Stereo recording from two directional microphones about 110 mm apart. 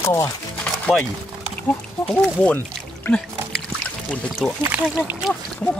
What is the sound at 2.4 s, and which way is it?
Music, 15° left (ahead or behind).